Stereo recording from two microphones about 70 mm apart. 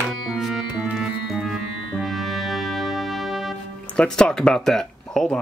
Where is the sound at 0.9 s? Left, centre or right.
Centre.